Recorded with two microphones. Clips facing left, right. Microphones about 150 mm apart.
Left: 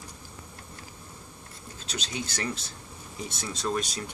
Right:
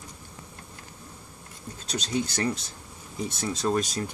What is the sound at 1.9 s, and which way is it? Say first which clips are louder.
Speech: right 7 dB; 40° right (ahead or behind).